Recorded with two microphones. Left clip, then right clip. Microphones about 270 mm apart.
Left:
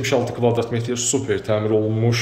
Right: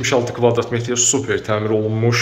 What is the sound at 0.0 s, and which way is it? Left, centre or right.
Speech, centre.